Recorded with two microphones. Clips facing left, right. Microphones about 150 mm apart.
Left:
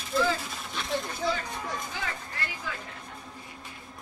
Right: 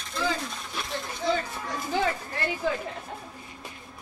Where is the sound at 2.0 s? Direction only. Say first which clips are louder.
Right 8 dB; 30° right (ahead or behind).